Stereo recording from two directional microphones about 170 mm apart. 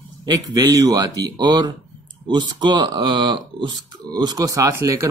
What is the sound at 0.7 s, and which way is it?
Speech, 20° right (ahead or behind).